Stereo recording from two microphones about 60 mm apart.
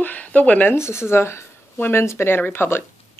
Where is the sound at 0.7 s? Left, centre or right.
Left.